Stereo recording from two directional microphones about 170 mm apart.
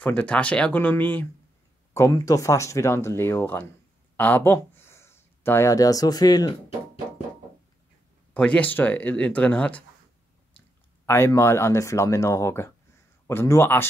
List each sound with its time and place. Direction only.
0.0 s speech: 10° left (ahead or behind); by 6.5 s 25° left (ahead or behind)
8.3 s speech: 10° left (ahead or behind)
11.1 s speech: 15° left (ahead or behind)